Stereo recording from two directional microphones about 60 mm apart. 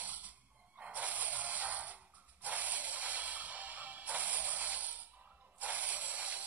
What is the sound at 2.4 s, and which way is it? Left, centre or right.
Music, right.